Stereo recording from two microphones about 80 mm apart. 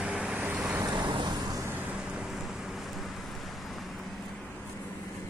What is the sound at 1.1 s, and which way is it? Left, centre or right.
Vehicle, right.